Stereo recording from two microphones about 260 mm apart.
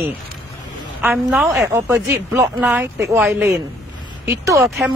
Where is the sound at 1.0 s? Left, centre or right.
Centre.